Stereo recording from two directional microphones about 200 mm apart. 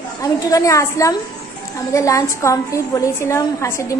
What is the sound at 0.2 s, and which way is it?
A woman's voice, 15° left (ahead or behind).